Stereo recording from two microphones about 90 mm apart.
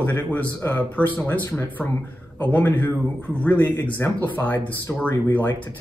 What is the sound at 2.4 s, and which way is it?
Speech, 20° left (ahead or behind).